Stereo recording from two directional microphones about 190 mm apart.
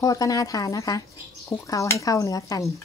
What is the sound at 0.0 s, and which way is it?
A woman's voice, 15° left (ahead or behind).